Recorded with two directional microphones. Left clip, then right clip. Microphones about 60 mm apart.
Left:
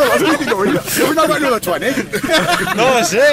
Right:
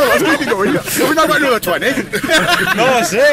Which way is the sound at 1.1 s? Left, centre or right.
Right.